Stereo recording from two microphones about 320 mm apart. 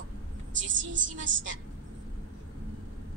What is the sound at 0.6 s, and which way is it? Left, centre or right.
A woman's voice, right.